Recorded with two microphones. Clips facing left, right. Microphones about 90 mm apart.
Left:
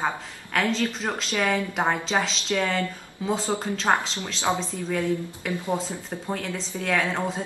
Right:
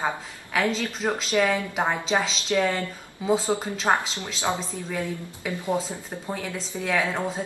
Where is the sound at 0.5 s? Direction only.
5° right (ahead or behind).